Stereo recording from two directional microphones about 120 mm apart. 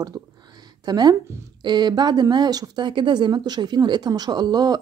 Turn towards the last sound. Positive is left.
turn(degrees=-35)  # may be behind; listen again after turning